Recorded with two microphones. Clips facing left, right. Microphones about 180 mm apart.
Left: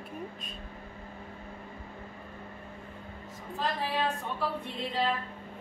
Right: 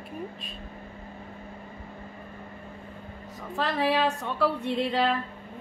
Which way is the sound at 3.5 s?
80° right.